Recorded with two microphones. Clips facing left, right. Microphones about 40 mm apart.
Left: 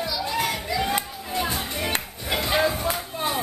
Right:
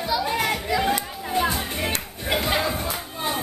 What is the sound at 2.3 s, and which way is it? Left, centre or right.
Crowd, centre.